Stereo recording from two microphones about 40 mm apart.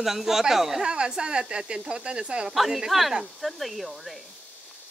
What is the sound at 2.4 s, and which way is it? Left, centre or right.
Speech, centre.